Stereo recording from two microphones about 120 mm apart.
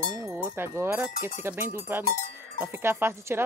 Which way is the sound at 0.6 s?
15° right (ahead or behind).